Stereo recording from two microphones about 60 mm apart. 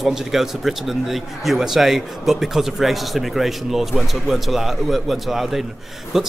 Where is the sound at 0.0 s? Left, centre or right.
Centre.